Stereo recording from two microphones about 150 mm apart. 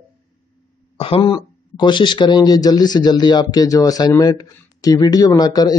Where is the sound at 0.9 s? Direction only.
40° left (ahead or behind).